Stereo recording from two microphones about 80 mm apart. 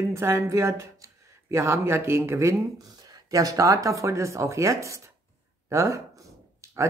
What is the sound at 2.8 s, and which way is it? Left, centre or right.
Speech, right.